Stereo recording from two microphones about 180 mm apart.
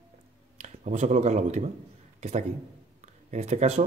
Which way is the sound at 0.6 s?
40° right (ahead or behind).